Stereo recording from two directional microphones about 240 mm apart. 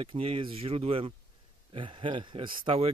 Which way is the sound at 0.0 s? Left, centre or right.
Right.